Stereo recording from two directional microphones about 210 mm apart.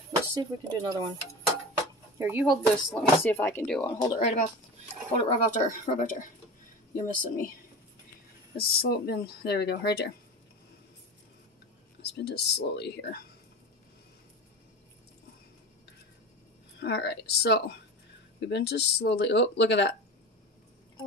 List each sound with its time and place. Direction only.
0.4 s stir: 20° right (ahead or behind)
2.1 s speech: 10° right (ahead or behind)
2.4 s speech: centre (ahead or behind)
4.2 s speech: 30° left (ahead or behind)
8.5 s speech: 50° left (ahead or behind)
12.0 s speech: 50° left (ahead or behind)
16.8 s speech: 55° left (ahead or behind)